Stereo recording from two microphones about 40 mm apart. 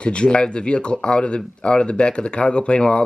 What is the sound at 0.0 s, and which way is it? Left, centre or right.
Speech, left.